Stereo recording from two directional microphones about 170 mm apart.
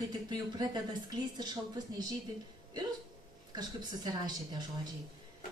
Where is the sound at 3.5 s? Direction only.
25° right (ahead or behind).